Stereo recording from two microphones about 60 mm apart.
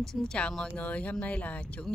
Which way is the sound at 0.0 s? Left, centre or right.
Centre.